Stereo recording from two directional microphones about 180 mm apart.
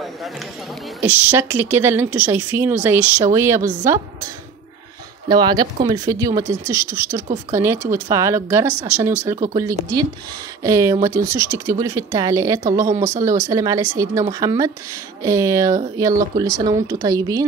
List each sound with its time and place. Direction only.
1.0 s speech: 10° right (ahead or behind)
5.3 s speech: 25° right (ahead or behind)
10.6 s speech: 20° right (ahead or behind)